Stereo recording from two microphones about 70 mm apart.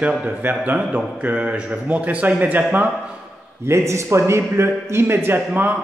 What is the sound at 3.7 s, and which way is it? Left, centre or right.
Speech, right.